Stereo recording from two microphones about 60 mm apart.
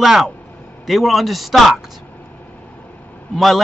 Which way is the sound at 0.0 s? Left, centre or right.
Centre.